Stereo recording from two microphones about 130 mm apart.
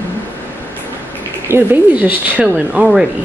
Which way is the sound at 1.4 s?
15° right (ahead or behind).